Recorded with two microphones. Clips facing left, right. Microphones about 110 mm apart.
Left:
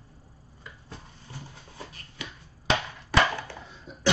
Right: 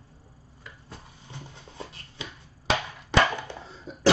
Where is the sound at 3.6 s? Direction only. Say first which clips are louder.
Right 5 dB; 35° right (ahead or behind).